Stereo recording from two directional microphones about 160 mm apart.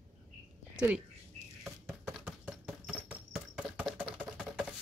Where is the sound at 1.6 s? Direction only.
Centre (ahead or behind).